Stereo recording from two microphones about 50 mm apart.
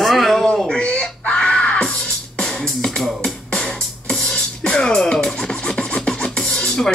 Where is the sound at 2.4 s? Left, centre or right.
Centre.